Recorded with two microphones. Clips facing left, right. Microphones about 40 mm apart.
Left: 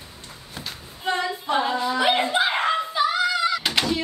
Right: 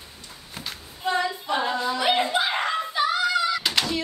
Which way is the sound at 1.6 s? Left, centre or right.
Centre.